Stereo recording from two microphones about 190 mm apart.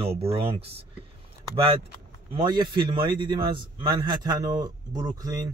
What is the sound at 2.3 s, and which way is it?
Speech, 25° right (ahead or behind).